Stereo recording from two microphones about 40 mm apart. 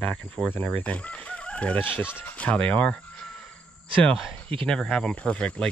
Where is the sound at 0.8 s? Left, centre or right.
Left.